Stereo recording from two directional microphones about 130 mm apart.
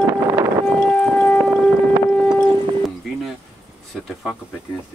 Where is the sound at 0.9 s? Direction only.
10° left (ahead or behind).